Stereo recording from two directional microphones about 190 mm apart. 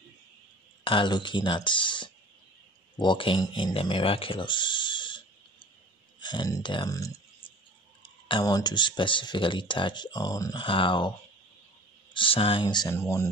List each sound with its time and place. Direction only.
0.8 s speech: 25° left (ahead or behind)